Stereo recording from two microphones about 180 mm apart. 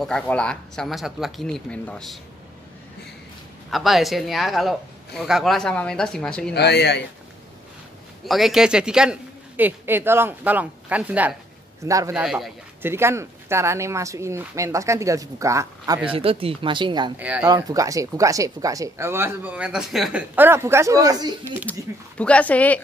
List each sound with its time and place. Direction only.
0.0 s speech: 5° left (ahead or behind)
3.7 s speech: centre (ahead or behind)
6.5 s speech: 65° left (ahead or behind)
8.3 s speech: centre (ahead or behind); by 12.2 s 15° right (ahead or behind)
12.2 s speech: centre (ahead or behind)
12.8 s speech: 15° right (ahead or behind)
16.1 s speech: 30° right (ahead or behind)
17.2 s speech: 10° right (ahead or behind)
17.5 s speech: 20° right (ahead or behind)
21.7 s speech: 10° left (ahead or behind)